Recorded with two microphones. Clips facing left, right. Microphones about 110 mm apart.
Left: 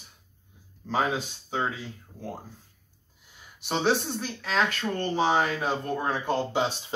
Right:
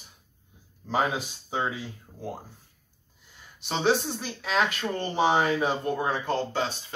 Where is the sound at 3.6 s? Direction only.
Centre (ahead or behind).